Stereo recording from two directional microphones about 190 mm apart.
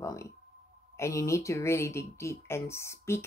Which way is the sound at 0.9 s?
15° left (ahead or behind).